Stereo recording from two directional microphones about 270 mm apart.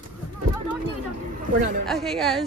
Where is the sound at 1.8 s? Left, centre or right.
Centre.